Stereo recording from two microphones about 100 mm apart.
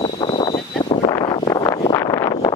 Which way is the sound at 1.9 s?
35° left (ahead or behind).